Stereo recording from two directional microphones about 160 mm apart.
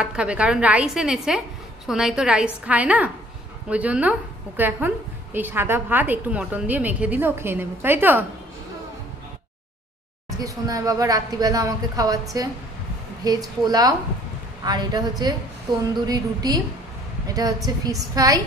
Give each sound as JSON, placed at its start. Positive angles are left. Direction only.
{"t": 0.0, "sound": "a woman's voice", "side_deg": -5}
{"t": 10.4, "sound": "speech", "side_deg": -20}